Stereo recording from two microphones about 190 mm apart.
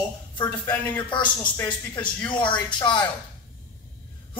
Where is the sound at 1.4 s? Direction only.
10° left (ahead or behind).